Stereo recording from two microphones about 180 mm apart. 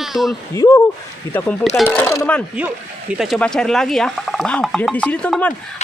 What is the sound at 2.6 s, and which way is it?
A man's voice, 5° right (ahead or behind).